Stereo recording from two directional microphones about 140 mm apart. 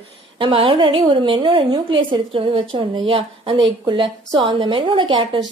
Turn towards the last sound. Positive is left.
turn(degrees=-35)  # may be behind; listen again after turning